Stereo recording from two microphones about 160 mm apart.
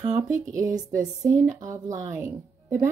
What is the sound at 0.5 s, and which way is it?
Speech, 20° right (ahead or behind).